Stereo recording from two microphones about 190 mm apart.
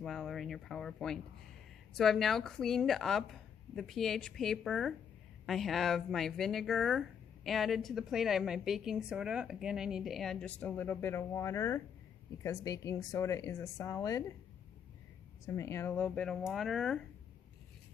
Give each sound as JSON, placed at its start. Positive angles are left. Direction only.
{"t": 0.0, "sound": "speech", "side_deg": 0}
{"t": 15.4, "sound": "speech", "side_deg": 15}